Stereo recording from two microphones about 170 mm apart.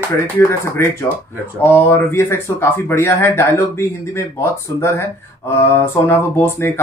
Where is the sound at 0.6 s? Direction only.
15° left (ahead or behind).